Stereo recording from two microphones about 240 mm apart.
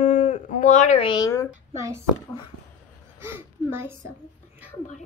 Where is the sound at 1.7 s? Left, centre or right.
Centre.